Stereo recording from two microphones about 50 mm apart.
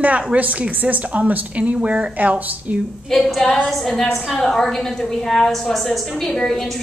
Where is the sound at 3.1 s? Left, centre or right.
Centre.